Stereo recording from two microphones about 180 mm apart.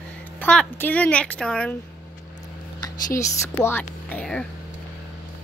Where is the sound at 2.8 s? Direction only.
20° left (ahead or behind).